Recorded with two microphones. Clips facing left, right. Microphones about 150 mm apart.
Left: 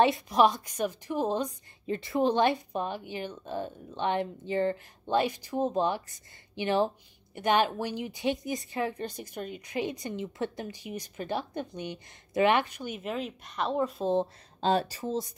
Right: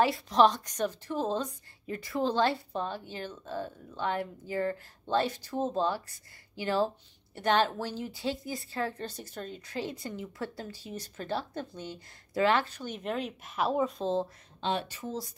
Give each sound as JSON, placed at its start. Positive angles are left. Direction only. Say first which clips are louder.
{"t": 0.3, "sound": "a woman's voice", "louder": "even", "side_deg": 10}
{"t": 1.9, "sound": "a woman's voice", "louder": "left 4 dB", "side_deg": 25}
{"t": 14.0, "sound": "speech", "louder": "left 3 dB", "side_deg": 20}
{"t": 14.6, "sound": "speech", "louder": "left 5 dB", "side_deg": 40}